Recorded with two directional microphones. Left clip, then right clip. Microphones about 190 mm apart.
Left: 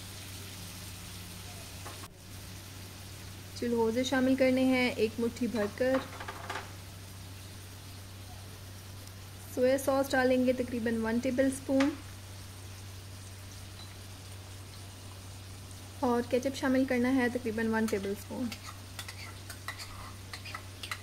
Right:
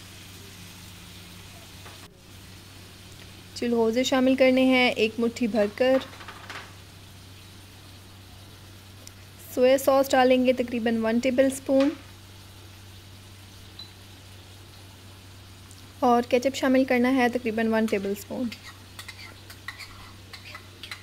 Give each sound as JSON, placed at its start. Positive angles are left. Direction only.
{"t": 3.5, "sound": "speech", "side_deg": -50}
{"t": 9.6, "sound": "speech", "side_deg": -50}
{"t": 16.0, "sound": "speech", "side_deg": -50}